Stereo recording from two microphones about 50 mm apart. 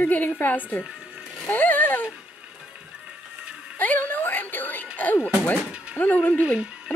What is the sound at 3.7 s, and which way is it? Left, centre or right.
Music, left.